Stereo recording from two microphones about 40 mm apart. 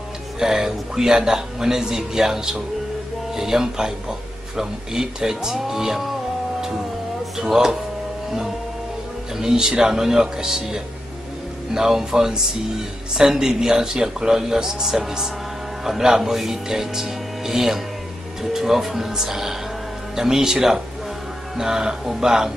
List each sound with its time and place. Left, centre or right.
0.4 s a man's voice: centre
7.5 s a man's voice: centre
9.4 s a man's voice: centre